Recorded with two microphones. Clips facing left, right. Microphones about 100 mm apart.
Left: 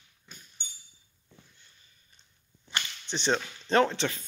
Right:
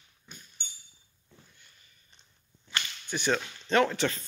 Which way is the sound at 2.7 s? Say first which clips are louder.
Even; 20° left (ahead or behind).